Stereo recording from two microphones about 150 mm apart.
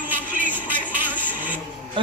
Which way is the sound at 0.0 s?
10° right (ahead or behind).